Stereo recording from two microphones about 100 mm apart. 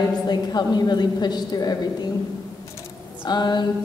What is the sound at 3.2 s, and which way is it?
Speech, 45° left (ahead or behind).